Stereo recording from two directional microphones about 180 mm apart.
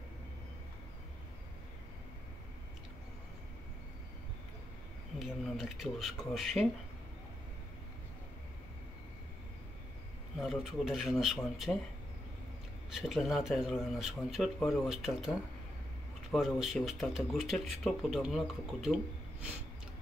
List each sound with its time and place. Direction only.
5.2 s speech: centre (ahead or behind)
10.4 s speech: centre (ahead or behind)
12.9 s speech: centre (ahead or behind)